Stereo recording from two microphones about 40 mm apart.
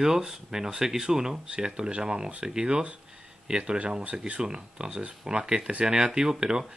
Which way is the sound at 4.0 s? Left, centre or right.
Right.